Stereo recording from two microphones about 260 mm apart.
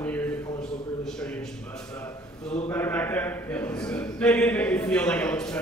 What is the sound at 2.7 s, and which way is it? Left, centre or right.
A man's voice, centre.